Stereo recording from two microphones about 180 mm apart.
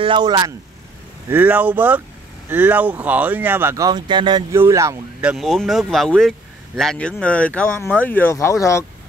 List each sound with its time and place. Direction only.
0.0 s speech: 25° right (ahead or behind)
1.3 s speech: 10° right (ahead or behind)
5.2 s speech: 5° right (ahead or behind); by 8.8 s 15° left (ahead or behind)